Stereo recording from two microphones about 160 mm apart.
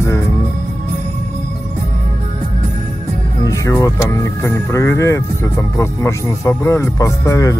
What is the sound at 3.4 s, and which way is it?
Speech, 20° left (ahead or behind).